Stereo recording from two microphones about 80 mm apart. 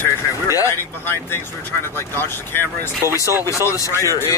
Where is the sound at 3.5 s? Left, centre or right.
Left.